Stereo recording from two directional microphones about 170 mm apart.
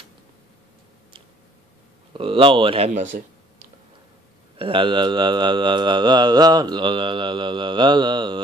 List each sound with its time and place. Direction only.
2.1 s speech: 30° right (ahead or behind); by 3.6 s 45° right (ahead or behind)
4.6 s speech: 30° right (ahead or behind)